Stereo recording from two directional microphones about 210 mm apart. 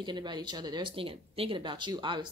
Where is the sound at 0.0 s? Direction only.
20° right (ahead or behind).